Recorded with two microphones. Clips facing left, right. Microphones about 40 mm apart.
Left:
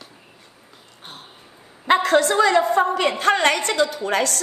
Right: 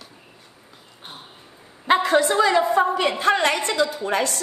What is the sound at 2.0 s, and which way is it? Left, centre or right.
A woman's voice, left.